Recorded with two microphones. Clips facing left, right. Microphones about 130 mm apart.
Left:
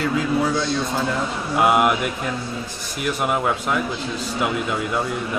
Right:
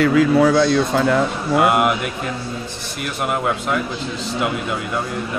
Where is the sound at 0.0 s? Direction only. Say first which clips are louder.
Right 7 dB; 75° right (ahead or behind).